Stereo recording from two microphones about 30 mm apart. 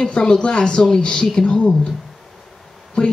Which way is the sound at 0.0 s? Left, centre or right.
Left.